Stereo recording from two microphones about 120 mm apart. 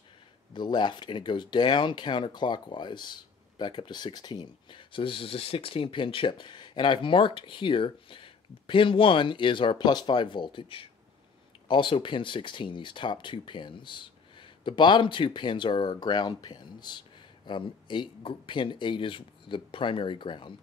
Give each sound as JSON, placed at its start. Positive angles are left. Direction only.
{"t": 0.5, "sound": "speech", "side_deg": 40}